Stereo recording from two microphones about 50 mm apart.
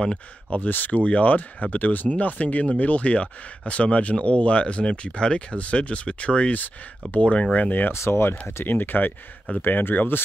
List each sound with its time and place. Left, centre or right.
0.5 s speech: left
7.9 s speech: left
8.6 s speech: left